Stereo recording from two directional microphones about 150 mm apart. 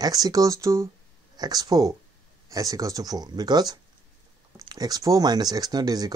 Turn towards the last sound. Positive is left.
turn(degrees=-25)  # may be behind; listen again after turning